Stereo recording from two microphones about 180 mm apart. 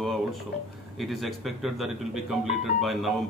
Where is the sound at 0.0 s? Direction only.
Centre (ahead or behind).